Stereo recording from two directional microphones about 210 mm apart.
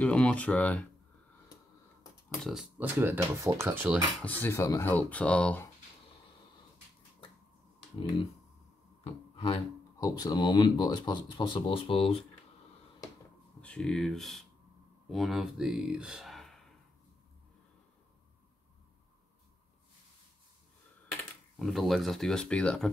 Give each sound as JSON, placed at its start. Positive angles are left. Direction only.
{"t": 0.0, "sound": "speech", "side_deg": 5}
{"t": 2.2, "sound": "speech", "side_deg": 0}
{"t": 2.8, "sound": "speech", "side_deg": -10}
{"t": 4.2, "sound": "speech", "side_deg": 10}
{"t": 9.0, "sound": "speech", "side_deg": 25}
{"t": 13.6, "sound": "speech", "side_deg": 5}
{"t": 21.5, "sound": "speech", "side_deg": 0}